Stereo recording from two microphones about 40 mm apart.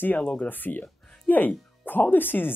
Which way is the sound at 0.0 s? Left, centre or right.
Left.